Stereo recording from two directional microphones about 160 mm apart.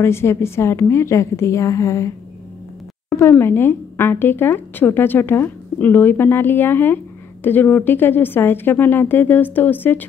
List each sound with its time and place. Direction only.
0.0 s speech: 15° left (ahead or behind)
3.1 s speech: 15° left (ahead or behind)